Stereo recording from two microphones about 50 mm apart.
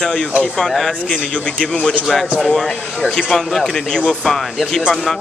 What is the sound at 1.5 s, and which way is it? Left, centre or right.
Speech, centre.